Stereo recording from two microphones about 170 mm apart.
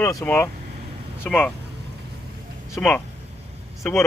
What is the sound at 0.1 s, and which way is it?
Speech, 15° left (ahead or behind).